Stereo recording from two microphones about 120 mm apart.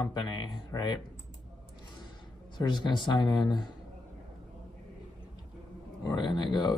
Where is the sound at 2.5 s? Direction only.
40° left (ahead or behind).